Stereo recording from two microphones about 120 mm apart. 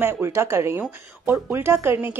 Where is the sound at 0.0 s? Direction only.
20° right (ahead or behind).